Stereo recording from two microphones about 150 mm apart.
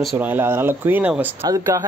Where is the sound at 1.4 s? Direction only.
20° right (ahead or behind).